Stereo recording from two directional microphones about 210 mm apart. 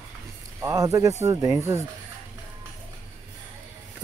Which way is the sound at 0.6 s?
15° right (ahead or behind).